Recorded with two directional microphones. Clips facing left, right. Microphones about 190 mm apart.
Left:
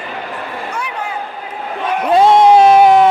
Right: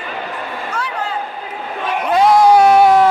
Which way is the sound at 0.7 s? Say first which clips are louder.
Right 2 dB; 10° left (ahead or behind).